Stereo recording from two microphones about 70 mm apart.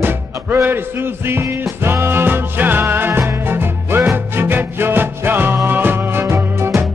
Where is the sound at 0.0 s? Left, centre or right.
Right.